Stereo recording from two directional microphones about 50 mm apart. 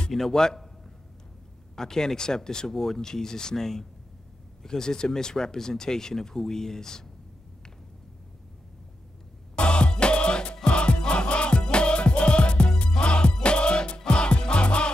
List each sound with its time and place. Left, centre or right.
0.1 s speech: centre
1.8 s speech: centre
9.6 s music: centre